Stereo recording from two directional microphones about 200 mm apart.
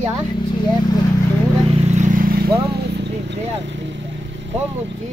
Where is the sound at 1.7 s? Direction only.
30° right (ahead or behind).